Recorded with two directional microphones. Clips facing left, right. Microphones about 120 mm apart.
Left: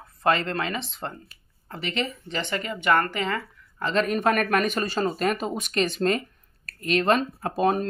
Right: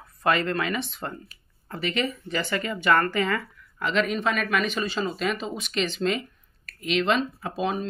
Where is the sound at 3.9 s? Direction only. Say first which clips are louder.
Left 2 dB; 45° left (ahead or behind).